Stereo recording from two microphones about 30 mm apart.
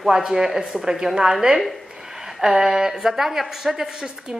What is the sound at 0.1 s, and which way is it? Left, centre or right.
A woman's voice, centre.